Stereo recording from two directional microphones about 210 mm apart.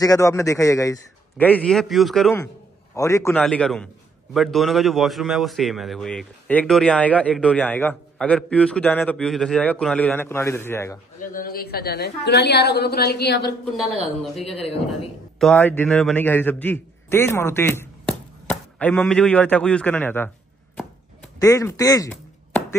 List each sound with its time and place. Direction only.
0.0 s a man's voice: 15° left (ahead or behind)
3.0 s a man's voice: 15° left (ahead or behind)
11.3 s a woman's voice: 45° left (ahead or behind)
15.3 s a man's voice: 5° left (ahead or behind)
21.4 s a man's voice: 15° left (ahead or behind)